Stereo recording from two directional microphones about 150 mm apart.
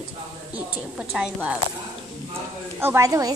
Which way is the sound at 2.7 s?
15° right (ahead or behind).